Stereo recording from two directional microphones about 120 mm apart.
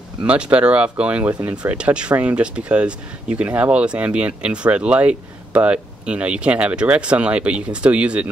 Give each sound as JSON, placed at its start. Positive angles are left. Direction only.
{"t": 0.2, "sound": "speech", "side_deg": -10}